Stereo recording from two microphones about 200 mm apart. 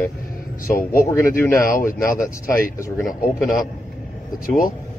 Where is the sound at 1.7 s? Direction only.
45° left (ahead or behind).